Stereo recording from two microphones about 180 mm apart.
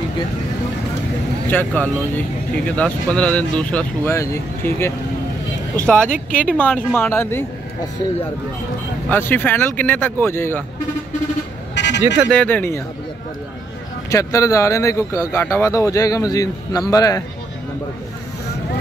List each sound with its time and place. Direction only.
1.5 s speech: 10° left (ahead or behind)
9.1 s speech: 10° left (ahead or behind)
11.7 s vehicle: 75° left (ahead or behind)
12.3 s speech: 5° left (ahead or behind)
14.1 s speech: 15° left (ahead or behind)